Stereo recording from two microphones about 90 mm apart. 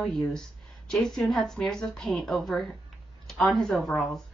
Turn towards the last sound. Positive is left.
turn(degrees=0)  # may be behind; listen again after turning